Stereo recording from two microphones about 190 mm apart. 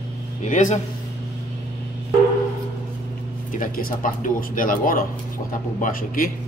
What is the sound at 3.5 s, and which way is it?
Speech, 50° left (ahead or behind).